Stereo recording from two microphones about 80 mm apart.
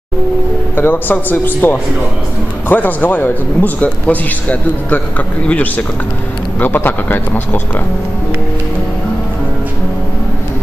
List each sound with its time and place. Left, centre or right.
0.7 s a man's voice: left